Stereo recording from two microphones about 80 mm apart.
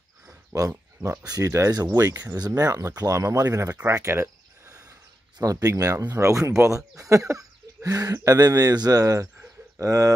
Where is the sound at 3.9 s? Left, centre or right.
Right.